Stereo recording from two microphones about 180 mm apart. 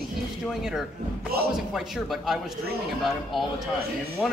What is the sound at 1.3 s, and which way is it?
Speech, 60° right (ahead or behind).